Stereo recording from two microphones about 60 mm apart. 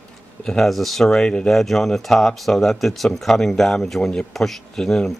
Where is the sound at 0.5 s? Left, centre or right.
Centre.